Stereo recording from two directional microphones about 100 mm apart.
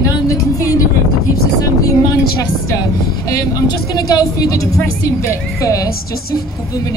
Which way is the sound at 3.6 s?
40° left (ahead or behind).